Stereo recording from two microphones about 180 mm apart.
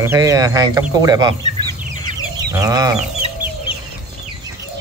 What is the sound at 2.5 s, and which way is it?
Speech, 20° right (ahead or behind).